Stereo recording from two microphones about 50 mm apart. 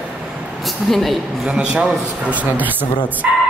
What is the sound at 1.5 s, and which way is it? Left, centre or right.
Speech, right.